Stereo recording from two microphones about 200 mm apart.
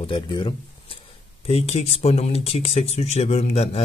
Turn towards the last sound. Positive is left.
turn(degrees=30)  # may be behind; listen again after turning